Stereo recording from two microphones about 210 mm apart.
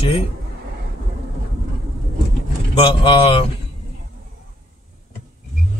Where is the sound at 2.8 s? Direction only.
25° left (ahead or behind).